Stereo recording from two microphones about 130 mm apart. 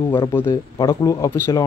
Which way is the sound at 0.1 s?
15° left (ahead or behind).